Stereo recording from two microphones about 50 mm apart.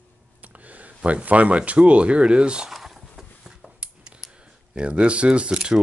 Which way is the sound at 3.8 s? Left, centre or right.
Right.